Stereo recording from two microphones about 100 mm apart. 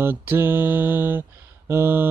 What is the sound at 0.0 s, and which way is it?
Mantra, 20° right (ahead or behind).